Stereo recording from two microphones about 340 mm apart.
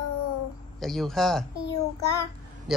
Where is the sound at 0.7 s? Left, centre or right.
Centre.